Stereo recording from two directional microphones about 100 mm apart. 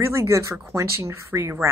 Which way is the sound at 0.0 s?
30° right (ahead or behind).